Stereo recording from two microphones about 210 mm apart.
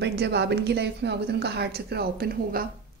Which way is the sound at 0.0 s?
50° right (ahead or behind).